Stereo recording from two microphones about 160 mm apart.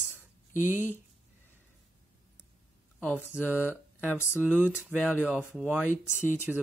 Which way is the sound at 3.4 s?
10° right (ahead or behind).